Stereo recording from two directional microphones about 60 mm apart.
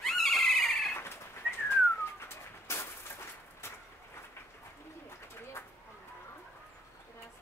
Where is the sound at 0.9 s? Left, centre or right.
Left.